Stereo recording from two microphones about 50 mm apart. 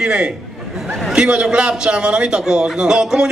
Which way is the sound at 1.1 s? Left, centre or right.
Centre.